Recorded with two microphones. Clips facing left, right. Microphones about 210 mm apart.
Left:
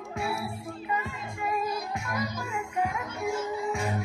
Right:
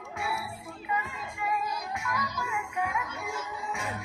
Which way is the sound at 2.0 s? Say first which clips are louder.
Left 2 dB; 50° left (ahead or behind).